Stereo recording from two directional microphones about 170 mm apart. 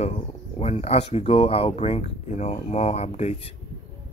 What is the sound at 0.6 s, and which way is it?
Speech, 35° left (ahead or behind).